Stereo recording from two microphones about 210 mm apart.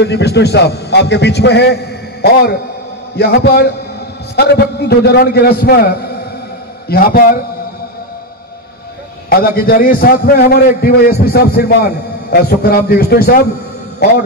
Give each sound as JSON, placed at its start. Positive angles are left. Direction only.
{"t": 0.0, "sound": "a man's voice", "side_deg": 55}
{"t": 3.2, "sound": "a man's voice", "side_deg": 50}
{"t": 9.3, "sound": "a man's voice", "side_deg": 45}